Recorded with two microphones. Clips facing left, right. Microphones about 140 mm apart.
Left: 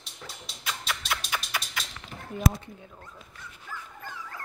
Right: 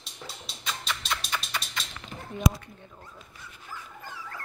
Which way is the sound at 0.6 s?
10° left (ahead or behind).